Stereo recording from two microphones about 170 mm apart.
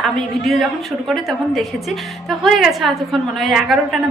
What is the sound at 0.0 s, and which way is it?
A woman's voice, centre (ahead or behind).